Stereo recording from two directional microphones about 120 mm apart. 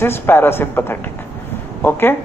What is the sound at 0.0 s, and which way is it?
A woman's voice, 20° left (ahead or behind).